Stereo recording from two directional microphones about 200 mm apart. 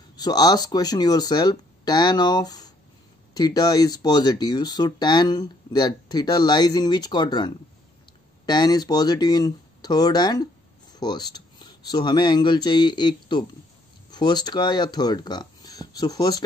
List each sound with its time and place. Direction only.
0.1 s speech: 20° left (ahead or behind)